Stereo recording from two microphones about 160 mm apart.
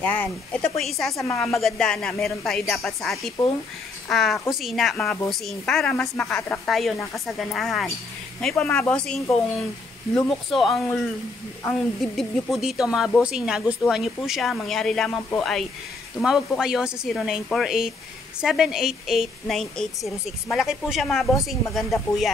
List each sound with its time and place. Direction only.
0.0 s speech: 10° left (ahead or behind)
1.1 s a woman's voice: 15° left (ahead or behind)
1.6 s speech: 5° left (ahead or behind)